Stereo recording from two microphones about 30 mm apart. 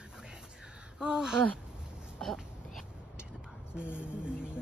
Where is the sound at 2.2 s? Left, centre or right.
Centre.